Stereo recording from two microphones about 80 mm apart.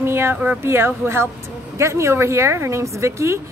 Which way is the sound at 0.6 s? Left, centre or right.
Right.